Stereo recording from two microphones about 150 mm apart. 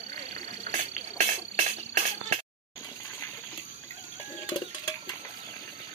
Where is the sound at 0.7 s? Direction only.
50° right (ahead or behind).